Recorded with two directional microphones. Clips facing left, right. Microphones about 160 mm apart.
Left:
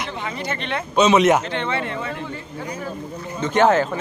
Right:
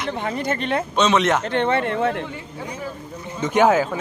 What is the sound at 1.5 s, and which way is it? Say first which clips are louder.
Speech: right 5 dB; 50° right (ahead or behind).